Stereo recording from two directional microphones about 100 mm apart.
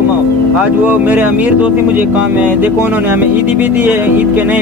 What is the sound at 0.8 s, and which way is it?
Speech, 20° right (ahead or behind).